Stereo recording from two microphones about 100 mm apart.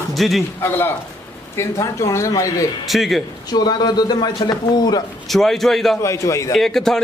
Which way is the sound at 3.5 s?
45° left (ahead or behind).